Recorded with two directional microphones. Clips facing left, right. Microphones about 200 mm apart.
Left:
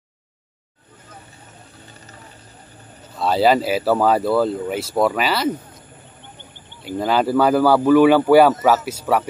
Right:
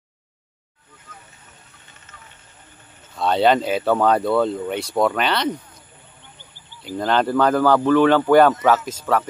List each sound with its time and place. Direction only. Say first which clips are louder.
3.2 s speech: left 1 dB; 5° left (ahead or behind)
7.0 s speech: left 1 dB; 5° left (ahead or behind)